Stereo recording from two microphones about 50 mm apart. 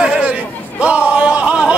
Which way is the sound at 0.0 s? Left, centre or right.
Right.